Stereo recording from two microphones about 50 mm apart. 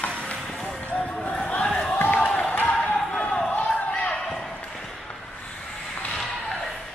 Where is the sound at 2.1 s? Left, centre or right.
Left.